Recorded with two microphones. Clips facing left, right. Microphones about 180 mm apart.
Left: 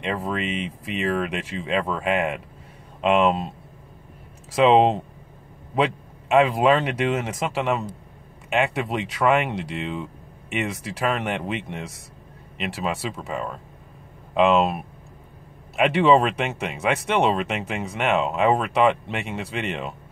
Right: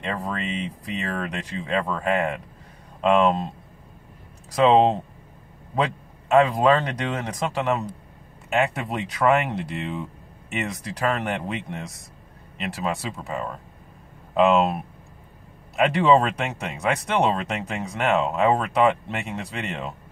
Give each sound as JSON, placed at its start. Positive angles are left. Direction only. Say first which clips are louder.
{"t": 0.0, "sound": "speech", "louder": "left 2 dB", "side_deg": 0}
{"t": 4.6, "sound": "speech", "louder": "even", "side_deg": 5}
{"t": 6.4, "sound": "speech", "louder": "left 1 dB", "side_deg": 5}
{"t": 11.2, "sound": "speech", "louder": "left 1 dB", "side_deg": 0}